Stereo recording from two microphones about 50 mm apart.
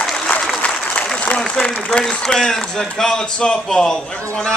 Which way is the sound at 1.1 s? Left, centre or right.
Left.